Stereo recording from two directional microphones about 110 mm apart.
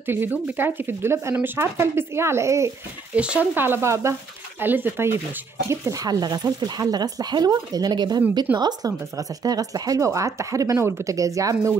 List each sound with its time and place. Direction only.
0.0 s speech: 20° right (ahead or behind)
3.2 s speech: 10° right (ahead or behind); by 11.7 s 30° right (ahead or behind)